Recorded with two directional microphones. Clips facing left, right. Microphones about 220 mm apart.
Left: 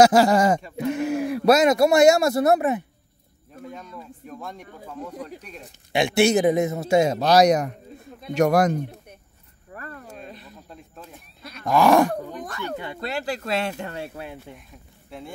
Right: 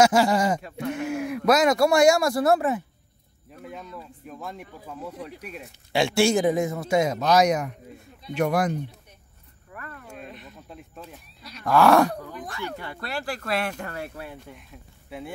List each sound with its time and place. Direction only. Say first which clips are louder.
0.0 s speech: left 4 dB; 40° left (ahead or behind)
0.6 s speech: left 3 dB; centre (ahead or behind)
1.0 s speech: left 4 dB; 35° left (ahead or behind); by 2.8 s 20° left (ahead or behind)
3.6 s speech: left 1 dB; centre (ahead or behind)
5.9 s speech: left 2 dB; 20° left (ahead or behind); by 8.9 s 40° left (ahead or behind)
9.7 s a sound: left 3 dB; 35° left (ahead or behind)
10.7 s speech: right 2 dB; 5° right (ahead or behind)
11.6 s groan: left 1 dB; 15° left (ahead or behind)
12.7 s speech: left 4 dB; 20° left (ahead or behind)
15.0 s speech: right 2 dB; 5° right (ahead or behind)